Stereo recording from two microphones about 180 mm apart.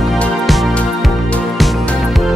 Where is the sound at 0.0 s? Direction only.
Centre (ahead or behind).